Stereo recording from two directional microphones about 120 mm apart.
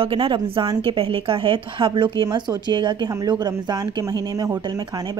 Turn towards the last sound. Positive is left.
turn(degrees=-30)  # may be behind; listen again after turning